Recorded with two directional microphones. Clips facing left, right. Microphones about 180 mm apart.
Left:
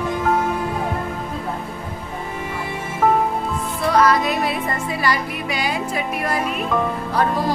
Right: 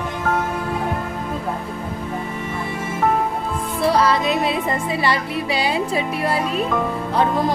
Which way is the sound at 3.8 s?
30° right (ahead or behind).